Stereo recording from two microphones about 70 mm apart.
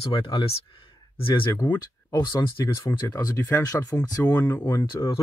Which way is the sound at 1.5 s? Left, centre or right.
Left.